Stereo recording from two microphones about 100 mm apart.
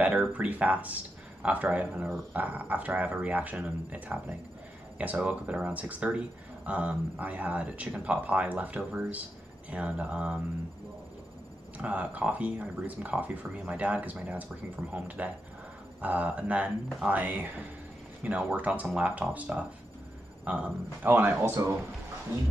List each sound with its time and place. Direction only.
0.0 s speech: 15° right (ahead or behind)
11.8 s speech: 15° right (ahead or behind)